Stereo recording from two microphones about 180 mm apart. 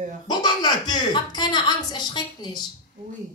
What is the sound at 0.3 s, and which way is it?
A woman's voice, 25° left (ahead or behind).